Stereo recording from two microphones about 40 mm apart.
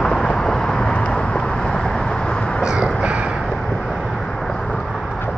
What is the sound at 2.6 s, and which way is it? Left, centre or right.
Crow, centre.